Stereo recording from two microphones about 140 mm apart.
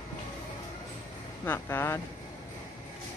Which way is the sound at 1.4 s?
15° left (ahead or behind).